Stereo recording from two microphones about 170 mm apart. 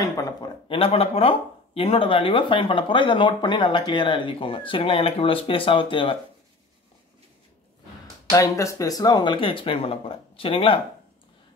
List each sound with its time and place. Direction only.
0.0 s speech: 20° left (ahead or behind)
8.3 s speech: 20° left (ahead or behind)